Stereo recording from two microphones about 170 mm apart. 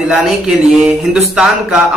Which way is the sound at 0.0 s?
Centre (ahead or behind).